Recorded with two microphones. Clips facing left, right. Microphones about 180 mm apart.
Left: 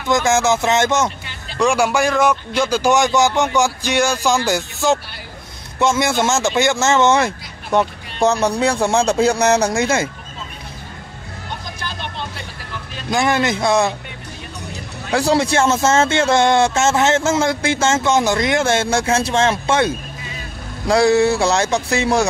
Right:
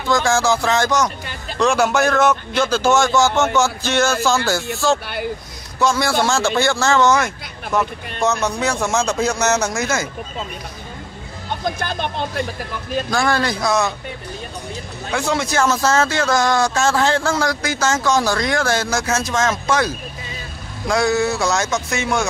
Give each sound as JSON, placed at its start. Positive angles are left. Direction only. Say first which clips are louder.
{"t": 0.1, "sound": "speech", "louder": "left 1 dB", "side_deg": 20}
{"t": 1.6, "sound": "a man's voice", "louder": "even", "side_deg": 10}
{"t": 11.6, "sound": "vehicle", "louder": "right 7 dB", "side_deg": -55}
{"t": 13.1, "sound": "speech", "louder": "left 3 dB", "side_deg": 20}
{"t": 15.0, "sound": "a man's voice", "louder": "left 5 dB", "side_deg": 35}